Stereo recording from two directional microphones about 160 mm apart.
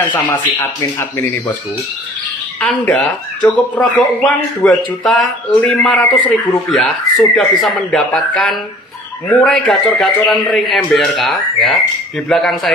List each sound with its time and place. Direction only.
0.1 s speech: 15° left (ahead or behind)
2.6 s a man's voice: 10° left (ahead or behind)